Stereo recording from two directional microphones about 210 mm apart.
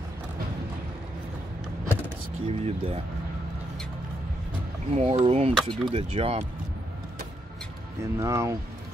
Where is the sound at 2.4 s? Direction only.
30° right (ahead or behind).